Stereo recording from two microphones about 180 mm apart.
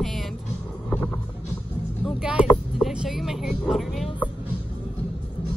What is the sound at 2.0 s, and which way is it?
Speech, 5° right (ahead or behind).